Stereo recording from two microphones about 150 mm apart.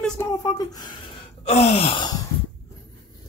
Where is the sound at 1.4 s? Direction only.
45° left (ahead or behind).